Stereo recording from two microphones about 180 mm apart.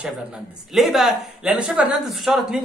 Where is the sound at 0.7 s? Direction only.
Centre (ahead or behind).